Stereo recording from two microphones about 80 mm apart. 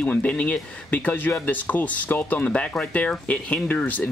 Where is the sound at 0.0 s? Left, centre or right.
Centre.